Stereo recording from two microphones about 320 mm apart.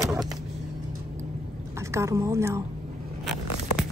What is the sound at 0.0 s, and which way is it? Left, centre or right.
Vehicle, centre.